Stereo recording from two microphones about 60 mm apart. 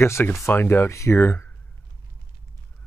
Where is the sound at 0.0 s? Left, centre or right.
Left.